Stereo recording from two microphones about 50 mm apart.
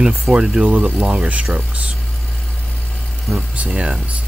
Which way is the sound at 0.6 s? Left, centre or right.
Right.